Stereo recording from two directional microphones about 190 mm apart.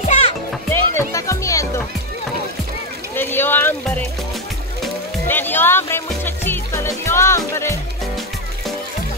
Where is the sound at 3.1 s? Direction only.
10° left (ahead or behind).